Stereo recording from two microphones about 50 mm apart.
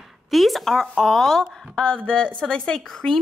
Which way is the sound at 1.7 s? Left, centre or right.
Left.